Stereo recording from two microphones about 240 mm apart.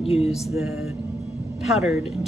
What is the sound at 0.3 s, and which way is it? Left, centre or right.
Speech, centre.